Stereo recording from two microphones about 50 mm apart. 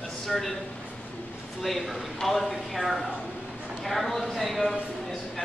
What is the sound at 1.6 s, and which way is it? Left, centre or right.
Speech, centre.